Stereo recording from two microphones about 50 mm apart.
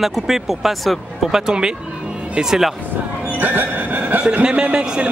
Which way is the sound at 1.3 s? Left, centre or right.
Centre.